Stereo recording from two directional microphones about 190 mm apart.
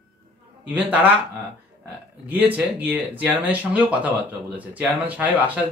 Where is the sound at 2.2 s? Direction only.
10° right (ahead or behind).